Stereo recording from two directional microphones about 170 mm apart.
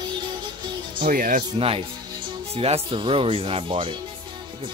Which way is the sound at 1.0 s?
55° right (ahead or behind).